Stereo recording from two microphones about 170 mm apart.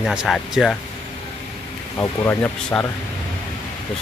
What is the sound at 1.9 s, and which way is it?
Speech, 15° left (ahead or behind).